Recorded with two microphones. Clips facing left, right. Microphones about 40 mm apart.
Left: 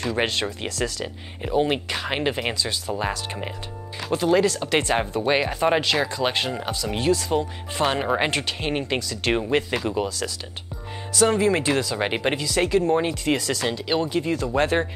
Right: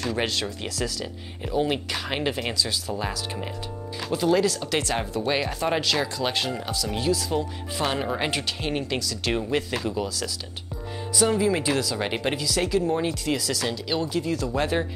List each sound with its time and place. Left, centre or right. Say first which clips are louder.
0.0 s speech: left 3 dB; centre
11.2 s speech: left 3 dB; left
11.7 s speech: left 2 dB; centre